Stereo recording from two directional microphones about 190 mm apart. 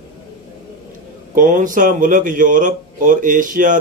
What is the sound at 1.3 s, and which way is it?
Speech, 45° right (ahead or behind).